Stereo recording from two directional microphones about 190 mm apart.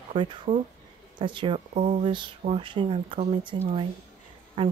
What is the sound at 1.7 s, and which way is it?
Speech, 40° right (ahead or behind).